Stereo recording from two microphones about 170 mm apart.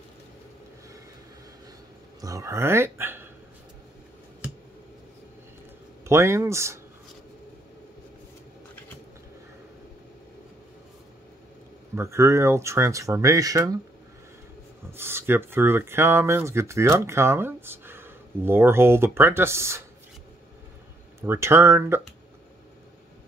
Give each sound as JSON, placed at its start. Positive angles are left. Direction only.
{"t": 2.2, "sound": "speech", "side_deg": -15}
{"t": 6.0, "sound": "speech", "side_deg": -15}
{"t": 11.9, "sound": "speech", "side_deg": -15}
{"t": 14.9, "sound": "speech", "side_deg": -15}
{"t": 21.2, "sound": "speech", "side_deg": -15}